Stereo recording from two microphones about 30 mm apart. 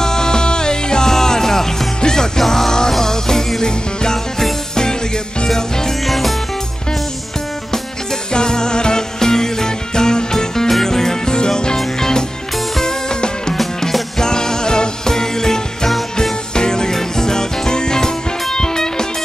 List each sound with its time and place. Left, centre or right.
0.0 s music: left
6.0 s music: centre
7.7 s music: left